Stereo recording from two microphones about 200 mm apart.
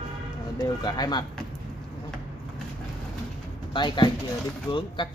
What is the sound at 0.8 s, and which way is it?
Speech, 20° left (ahead or behind).